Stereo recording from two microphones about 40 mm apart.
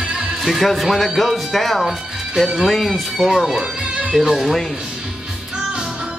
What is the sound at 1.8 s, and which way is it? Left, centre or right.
Speech, centre.